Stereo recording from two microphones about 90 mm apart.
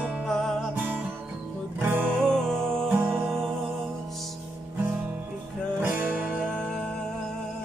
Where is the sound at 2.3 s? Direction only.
5° left (ahead or behind).